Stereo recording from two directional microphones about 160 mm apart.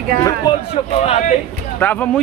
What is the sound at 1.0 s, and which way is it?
Speech, 40° left (ahead or behind).